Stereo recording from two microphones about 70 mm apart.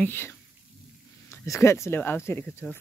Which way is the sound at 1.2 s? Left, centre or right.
Left.